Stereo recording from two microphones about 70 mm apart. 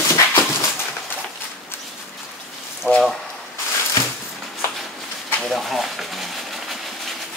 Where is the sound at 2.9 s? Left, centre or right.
Left.